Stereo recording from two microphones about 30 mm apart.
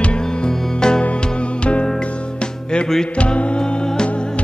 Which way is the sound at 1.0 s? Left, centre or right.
Left.